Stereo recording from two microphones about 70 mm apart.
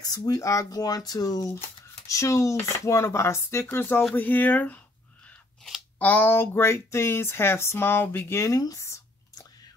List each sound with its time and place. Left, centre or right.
0.0 s speech: left
2.0 s speech: left
5.9 s speech: left
8.5 s speech: left